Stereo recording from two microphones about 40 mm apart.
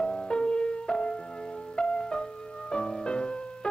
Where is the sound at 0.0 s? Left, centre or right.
Centre.